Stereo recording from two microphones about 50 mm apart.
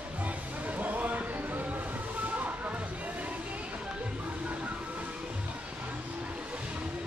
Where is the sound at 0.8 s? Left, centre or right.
Right.